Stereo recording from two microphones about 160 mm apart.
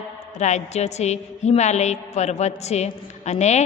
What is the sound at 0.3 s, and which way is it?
A woman's voice, 45° left (ahead or behind).